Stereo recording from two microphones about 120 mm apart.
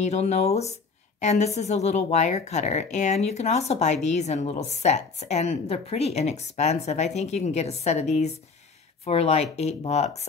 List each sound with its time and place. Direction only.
0.0 s a woman's voice: 65° left (ahead or behind)